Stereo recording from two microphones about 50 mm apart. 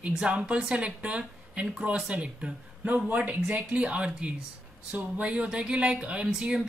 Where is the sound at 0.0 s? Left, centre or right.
Centre.